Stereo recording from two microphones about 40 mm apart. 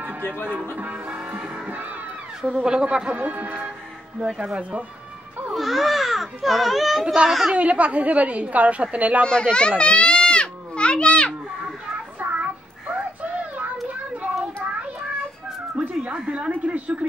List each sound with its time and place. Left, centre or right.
0.8 s a woman's voice: right
2.6 s speech: right
3.2 s a woman's voice: right
5.5 s speech: centre
7.5 s a woman's voice: right
9.2 s children playing: left
12.2 s child singing: right
16.1 s a woman's voice: right